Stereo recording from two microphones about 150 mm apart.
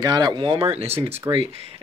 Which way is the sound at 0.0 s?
30° right (ahead or behind).